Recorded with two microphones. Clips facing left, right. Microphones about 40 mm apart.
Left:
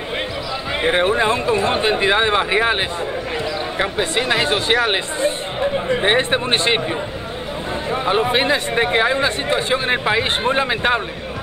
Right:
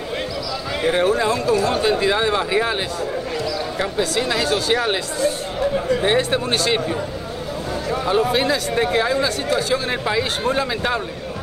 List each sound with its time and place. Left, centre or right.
0.8 s speech: left